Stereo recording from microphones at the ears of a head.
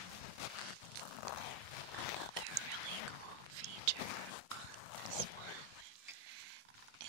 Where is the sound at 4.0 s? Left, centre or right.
Left.